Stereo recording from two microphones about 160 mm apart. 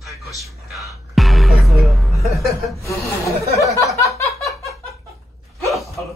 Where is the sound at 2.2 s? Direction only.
Centre (ahead or behind).